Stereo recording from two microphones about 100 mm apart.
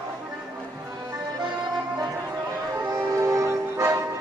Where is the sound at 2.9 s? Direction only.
35° right (ahead or behind).